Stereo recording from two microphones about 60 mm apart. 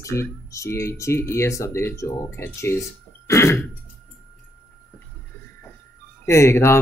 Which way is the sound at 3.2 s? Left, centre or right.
Left.